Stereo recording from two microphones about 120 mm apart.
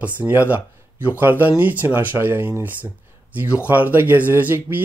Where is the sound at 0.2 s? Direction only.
15° right (ahead or behind).